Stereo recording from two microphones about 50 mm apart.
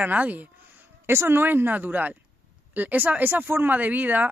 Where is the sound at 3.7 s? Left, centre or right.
Right.